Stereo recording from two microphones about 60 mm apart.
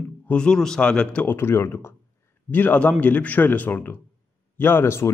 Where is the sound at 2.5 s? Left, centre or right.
Left.